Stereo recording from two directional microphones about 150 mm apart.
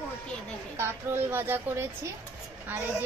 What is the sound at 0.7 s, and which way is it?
Speech, 15° right (ahead or behind).